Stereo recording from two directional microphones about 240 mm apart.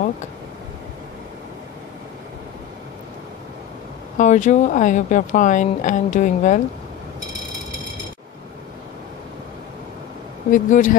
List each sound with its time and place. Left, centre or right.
4.2 s speech: left
10.5 s speech: left